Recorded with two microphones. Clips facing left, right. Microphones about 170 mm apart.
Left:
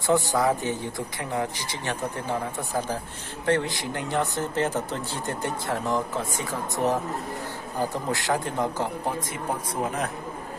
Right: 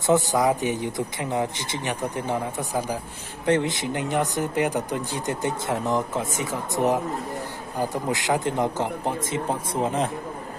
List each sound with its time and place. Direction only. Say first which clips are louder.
0.0 s speech: right 2 dB; 20° right (ahead or behind)